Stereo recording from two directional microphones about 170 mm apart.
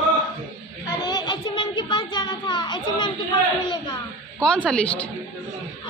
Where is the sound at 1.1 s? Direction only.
25° left (ahead or behind).